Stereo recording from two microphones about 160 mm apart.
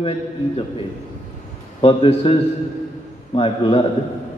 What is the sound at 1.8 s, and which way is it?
A man's voice, 35° left (ahead or behind).